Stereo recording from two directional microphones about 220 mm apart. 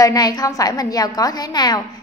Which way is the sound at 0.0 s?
15° left (ahead or behind).